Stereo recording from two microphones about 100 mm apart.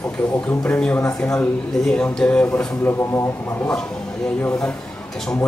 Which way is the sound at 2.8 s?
25° left (ahead or behind).